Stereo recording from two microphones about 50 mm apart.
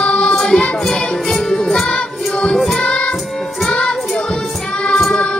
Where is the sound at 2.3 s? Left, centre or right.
Centre.